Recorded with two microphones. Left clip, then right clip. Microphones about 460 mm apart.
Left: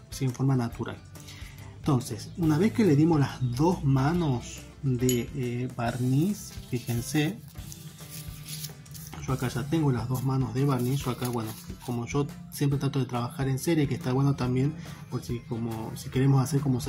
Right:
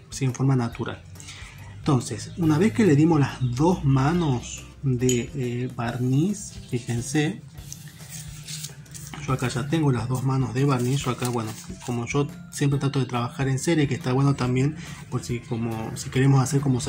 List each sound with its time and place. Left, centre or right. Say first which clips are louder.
0.1 s speech: right 4 dB; left
9.1 s speech: right 5 dB; left